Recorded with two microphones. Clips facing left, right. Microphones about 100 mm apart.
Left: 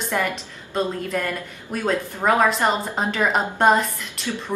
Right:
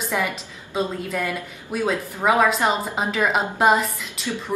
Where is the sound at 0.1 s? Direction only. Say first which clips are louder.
Left 1 dB; 5° right (ahead or behind).